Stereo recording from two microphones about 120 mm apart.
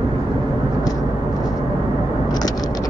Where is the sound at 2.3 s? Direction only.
35° left (ahead or behind).